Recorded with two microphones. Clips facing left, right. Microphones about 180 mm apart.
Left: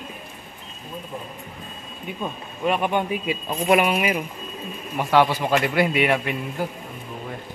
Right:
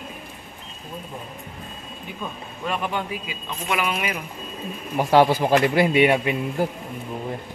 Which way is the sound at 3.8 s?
15° left (ahead or behind).